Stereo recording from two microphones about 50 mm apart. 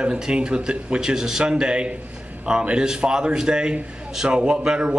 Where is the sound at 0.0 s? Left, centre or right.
Centre.